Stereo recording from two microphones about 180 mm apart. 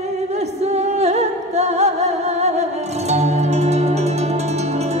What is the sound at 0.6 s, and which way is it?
Music, 40° right (ahead or behind).